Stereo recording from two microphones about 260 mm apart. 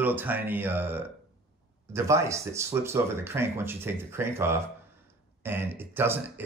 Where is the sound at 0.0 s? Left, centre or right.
Centre.